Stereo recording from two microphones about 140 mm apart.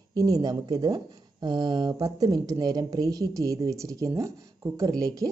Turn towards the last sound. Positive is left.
turn(degrees=-25)  # may be behind; listen again after turning